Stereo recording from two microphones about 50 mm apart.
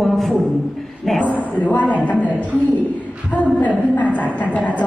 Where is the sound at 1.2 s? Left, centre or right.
Left.